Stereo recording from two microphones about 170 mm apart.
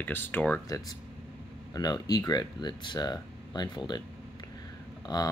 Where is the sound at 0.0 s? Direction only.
10° left (ahead or behind).